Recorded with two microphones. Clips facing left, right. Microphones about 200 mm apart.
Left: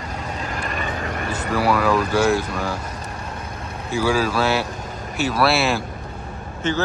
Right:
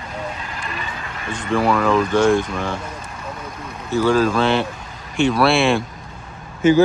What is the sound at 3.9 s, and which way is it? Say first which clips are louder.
Speech: right 4 dB; 10° left (ahead or behind).